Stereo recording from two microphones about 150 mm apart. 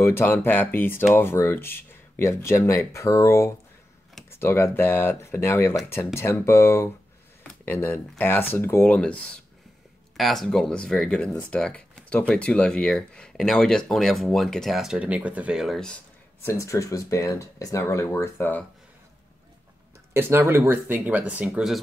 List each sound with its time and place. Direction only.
0.0 s speech: 15° left (ahead or behind)
16.4 s speech: 20° left (ahead or behind)
20.2 s speech: 15° right (ahead or behind)